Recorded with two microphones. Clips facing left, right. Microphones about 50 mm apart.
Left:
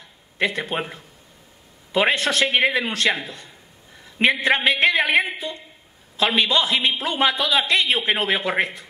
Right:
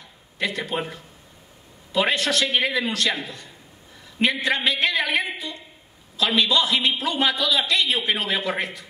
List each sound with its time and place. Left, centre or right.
0.4 s a man's voice: left